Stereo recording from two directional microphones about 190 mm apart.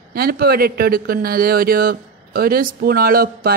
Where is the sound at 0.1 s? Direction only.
55° right (ahead or behind).